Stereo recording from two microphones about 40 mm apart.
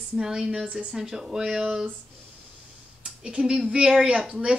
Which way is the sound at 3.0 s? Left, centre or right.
Centre.